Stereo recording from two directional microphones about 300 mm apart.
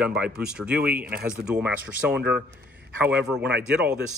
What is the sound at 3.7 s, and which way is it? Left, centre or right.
Speech, centre.